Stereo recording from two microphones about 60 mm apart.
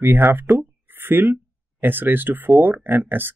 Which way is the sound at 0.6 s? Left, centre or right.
Right.